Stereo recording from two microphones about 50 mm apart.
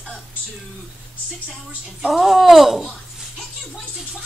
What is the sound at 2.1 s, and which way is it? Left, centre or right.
Speech, centre.